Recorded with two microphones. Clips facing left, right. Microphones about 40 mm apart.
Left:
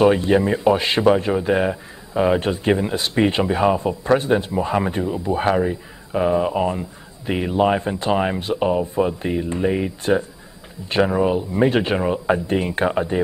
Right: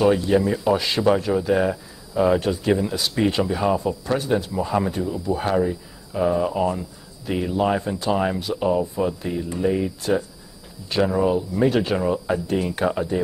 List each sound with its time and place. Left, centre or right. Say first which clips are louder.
0.0 s speech: left 2 dB; left